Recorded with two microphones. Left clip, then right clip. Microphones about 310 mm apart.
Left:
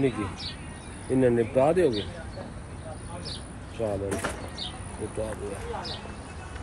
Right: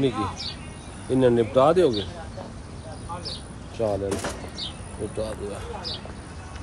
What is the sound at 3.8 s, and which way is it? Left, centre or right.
Speech, centre.